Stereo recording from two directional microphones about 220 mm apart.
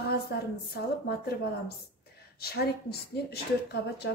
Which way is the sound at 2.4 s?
45° left (ahead or behind).